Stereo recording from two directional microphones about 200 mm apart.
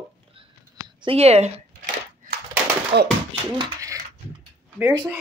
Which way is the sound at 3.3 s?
20° right (ahead or behind).